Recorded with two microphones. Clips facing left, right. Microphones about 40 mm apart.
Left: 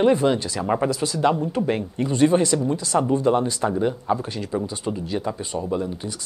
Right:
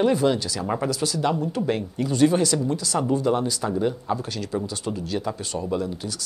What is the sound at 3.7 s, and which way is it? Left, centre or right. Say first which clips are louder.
Speech: left 2 dB; centre.